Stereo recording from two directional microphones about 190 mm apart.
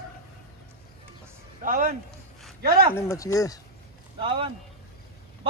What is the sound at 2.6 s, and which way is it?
Speech, 55° right (ahead or behind).